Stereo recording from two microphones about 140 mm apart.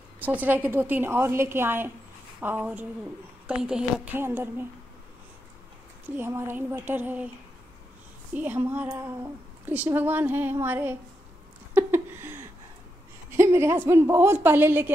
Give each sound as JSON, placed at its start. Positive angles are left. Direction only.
{"t": 0.2, "sound": "speech", "side_deg": -10}
{"t": 6.1, "sound": "speech", "side_deg": -15}
{"t": 8.4, "sound": "speech", "side_deg": -15}
{"t": 11.7, "sound": "a sound", "side_deg": -15}
{"t": 13.4, "sound": "speech", "side_deg": -20}